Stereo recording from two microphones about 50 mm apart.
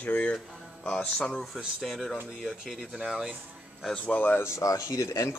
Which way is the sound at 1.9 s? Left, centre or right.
Centre.